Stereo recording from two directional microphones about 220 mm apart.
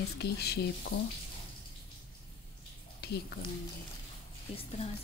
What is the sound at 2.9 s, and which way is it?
Speech, 45° left (ahead or behind).